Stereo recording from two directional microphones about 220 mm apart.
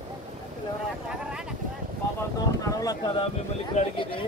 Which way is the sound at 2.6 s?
15° left (ahead or behind).